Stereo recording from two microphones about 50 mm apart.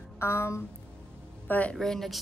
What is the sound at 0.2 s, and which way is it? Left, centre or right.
Speech, left.